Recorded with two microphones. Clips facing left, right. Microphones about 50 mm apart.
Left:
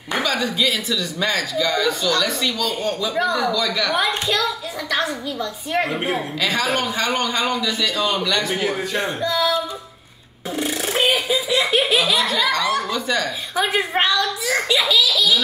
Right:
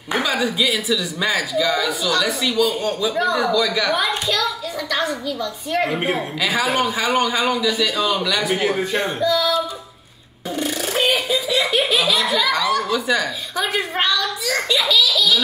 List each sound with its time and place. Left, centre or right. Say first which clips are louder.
0.1 s a child's voice: right 1 dB; centre
5.9 s a man's voice: right 1 dB; centre
9.2 s a child's voice: right 2 dB; centre
10.5 s laughter: even; centre
12.9 s speech: right 2 dB; centre
13.6 s a child's voice: left 2 dB; centre